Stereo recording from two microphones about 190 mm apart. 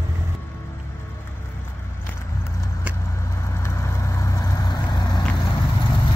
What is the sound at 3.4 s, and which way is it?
Vehicle, 15° left (ahead or behind).